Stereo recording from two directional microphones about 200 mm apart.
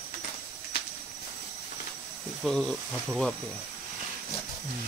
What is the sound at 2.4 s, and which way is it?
Speech, centre (ahead or behind).